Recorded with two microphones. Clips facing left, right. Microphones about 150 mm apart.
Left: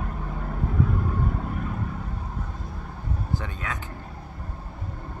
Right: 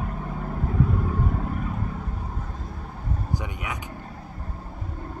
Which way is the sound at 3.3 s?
15° right (ahead or behind).